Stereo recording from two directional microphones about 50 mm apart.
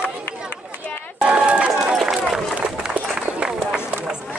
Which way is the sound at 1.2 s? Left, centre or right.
Right.